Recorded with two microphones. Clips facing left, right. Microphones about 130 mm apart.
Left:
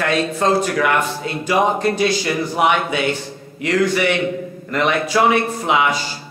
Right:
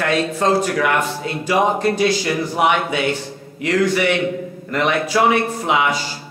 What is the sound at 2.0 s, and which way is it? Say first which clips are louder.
Speech: right 1 dB; 20° left (ahead or behind).